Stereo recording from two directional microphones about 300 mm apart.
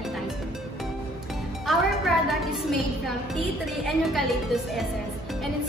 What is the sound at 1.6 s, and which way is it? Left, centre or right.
A woman's voice, centre.